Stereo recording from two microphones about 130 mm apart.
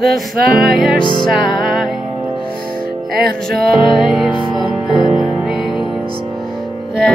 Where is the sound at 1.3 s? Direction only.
Centre (ahead or behind).